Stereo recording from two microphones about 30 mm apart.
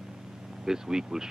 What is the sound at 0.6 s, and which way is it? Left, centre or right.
Speech, centre.